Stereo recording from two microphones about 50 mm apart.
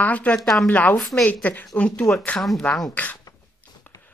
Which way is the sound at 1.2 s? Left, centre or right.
Left.